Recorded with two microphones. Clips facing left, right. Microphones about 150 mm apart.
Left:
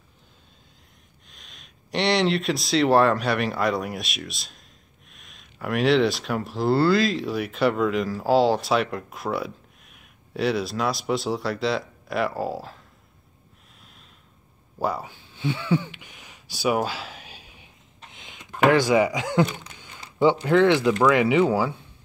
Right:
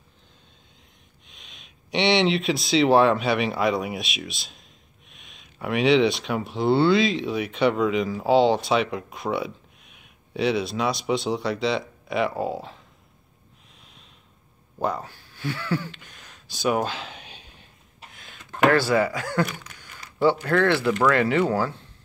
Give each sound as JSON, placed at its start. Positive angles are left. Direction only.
{"t": 1.2, "sound": "speech", "side_deg": 0}
{"t": 14.8, "sound": "speech", "side_deg": 5}
{"t": 18.1, "sound": "a sound", "side_deg": 20}
{"t": 18.5, "sound": "speech", "side_deg": 10}